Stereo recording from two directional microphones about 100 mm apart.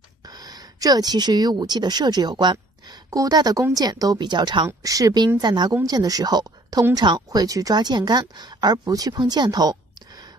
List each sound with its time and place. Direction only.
0.3 s a woman's voice: 40° right (ahead or behind)
4.6 s speech: 35° right (ahead or behind)